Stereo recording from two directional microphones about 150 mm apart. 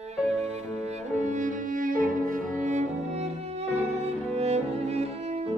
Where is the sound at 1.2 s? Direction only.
55° right (ahead or behind).